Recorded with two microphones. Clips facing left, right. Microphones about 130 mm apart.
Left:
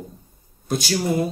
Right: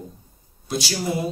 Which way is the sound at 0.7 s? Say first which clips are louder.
Left 3 dB; 50° left (ahead or behind).